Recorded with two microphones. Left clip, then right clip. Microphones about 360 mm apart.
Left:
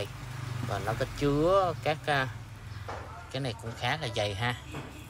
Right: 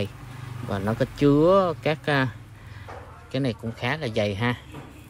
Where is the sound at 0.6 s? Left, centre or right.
Centre.